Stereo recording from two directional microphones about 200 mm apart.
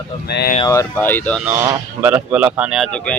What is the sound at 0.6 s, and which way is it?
Speech, 10° left (ahead or behind).